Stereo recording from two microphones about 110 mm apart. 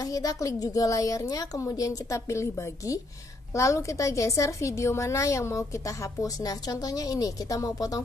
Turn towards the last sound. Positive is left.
turn(degrees=30)  # may be behind; listen again after turning